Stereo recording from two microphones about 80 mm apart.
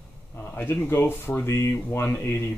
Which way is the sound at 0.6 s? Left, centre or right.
Left.